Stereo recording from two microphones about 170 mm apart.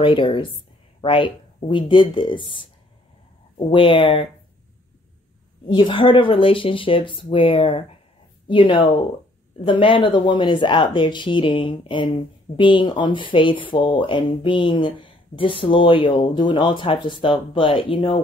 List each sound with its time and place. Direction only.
0.0 s speech: 30° left (ahead or behind)
5.7 s speech: 30° left (ahead or behind)